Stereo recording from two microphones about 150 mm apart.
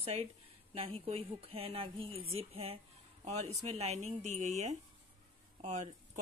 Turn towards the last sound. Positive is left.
turn(degrees=-50)  # may be behind; listen again after turning